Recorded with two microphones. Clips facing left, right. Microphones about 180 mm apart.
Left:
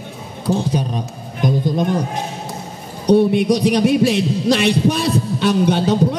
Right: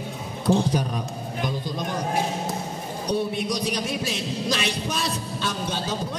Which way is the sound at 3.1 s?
65° left (ahead or behind).